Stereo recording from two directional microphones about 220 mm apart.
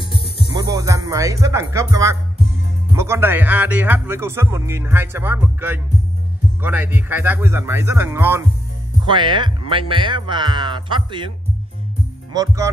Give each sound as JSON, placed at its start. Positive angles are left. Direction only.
{"t": 0.0, "sound": "music", "side_deg": 25}
{"t": 0.5, "sound": "speech", "side_deg": -15}
{"t": 12.3, "sound": "speech", "side_deg": -15}